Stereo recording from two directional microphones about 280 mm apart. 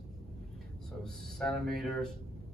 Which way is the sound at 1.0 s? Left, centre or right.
Centre.